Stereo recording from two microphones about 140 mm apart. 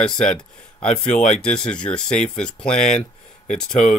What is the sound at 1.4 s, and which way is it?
Speech, 5° left (ahead or behind).